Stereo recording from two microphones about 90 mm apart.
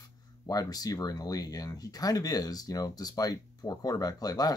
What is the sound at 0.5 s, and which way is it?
Speech, 45° left (ahead or behind).